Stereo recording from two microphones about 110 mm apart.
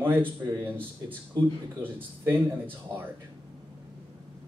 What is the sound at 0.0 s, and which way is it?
Speech, 15° right (ahead or behind).